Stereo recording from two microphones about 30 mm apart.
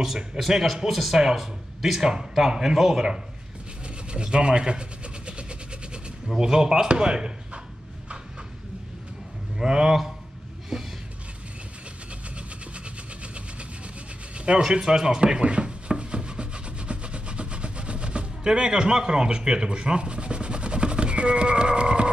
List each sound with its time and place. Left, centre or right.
0.3 s speech: right
0.8 s speech: centre
2.0 s speech: right
3.8 s vehicle: right
6.2 s speech: centre
9.6 s speech: right
12.1 s vehicle: right
14.3 s a sound: right
14.6 s rub: right
18.4 s speech: right